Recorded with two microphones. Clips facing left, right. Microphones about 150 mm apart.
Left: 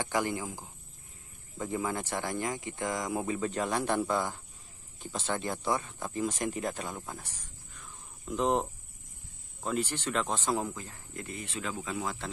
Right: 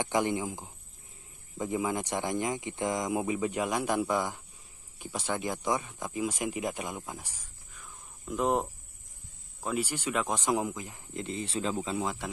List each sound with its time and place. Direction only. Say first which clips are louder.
0.0 s speech: right 3 dB; 20° right (ahead or behind)